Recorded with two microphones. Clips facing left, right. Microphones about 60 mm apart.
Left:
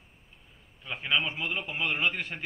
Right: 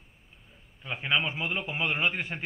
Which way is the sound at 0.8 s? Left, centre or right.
Centre.